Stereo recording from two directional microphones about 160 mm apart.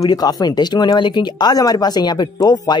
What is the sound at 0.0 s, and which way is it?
Speech, 25° left (ahead or behind).